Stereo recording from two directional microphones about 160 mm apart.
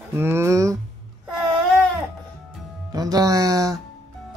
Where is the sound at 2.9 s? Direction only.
25° right (ahead or behind).